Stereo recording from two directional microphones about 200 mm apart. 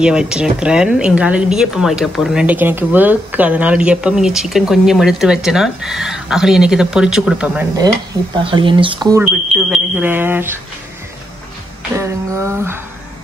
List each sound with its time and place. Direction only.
0.0 s speech: 5° right (ahead or behind)
8.5 s speech: 25° right (ahead or behind)
9.2 s speech: 5° right (ahead or behind)
12.0 s speech: 15° right (ahead or behind)